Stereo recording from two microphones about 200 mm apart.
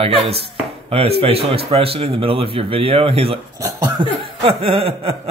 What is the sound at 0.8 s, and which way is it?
Speech, 30° right (ahead or behind).